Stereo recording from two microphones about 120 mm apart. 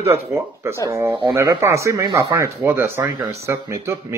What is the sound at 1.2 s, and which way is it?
Speech, 35° right (ahead or behind).